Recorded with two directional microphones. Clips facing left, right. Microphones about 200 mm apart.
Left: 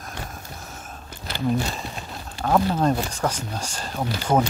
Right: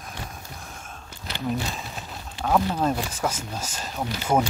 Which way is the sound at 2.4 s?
Centre (ahead or behind).